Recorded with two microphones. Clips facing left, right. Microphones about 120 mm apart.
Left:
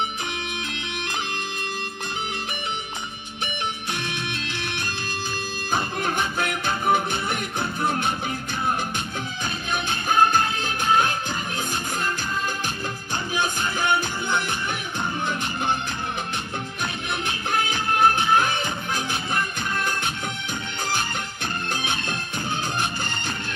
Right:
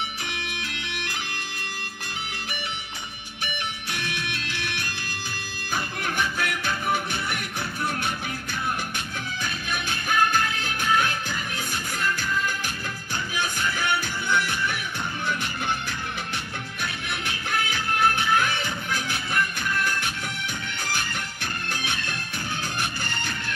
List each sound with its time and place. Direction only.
3.9 s music: 20° left (ahead or behind)
9.4 s music: 20° left (ahead or behind)
13.3 s music: 20° left (ahead or behind)
16.8 s music: 25° left (ahead or behind)